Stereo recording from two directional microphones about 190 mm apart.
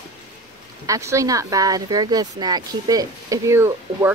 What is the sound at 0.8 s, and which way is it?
Speech, 15° right (ahead or behind).